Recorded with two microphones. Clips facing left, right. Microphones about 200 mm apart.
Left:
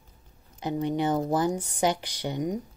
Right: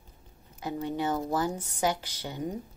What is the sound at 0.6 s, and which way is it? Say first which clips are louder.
Speech: left 4 dB; 20° left (ahead or behind).